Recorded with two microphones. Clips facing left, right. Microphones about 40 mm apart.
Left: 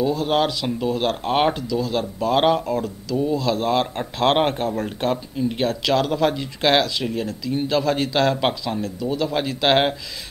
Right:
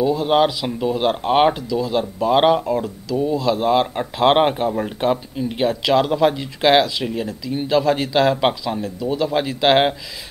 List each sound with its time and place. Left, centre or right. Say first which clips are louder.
0.0 s speech: right 4 dB; centre